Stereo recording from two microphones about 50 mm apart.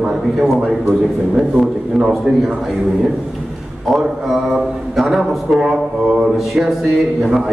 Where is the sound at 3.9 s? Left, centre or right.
Centre.